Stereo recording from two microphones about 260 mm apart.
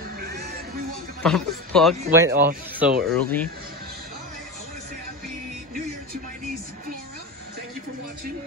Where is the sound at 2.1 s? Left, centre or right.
Centre.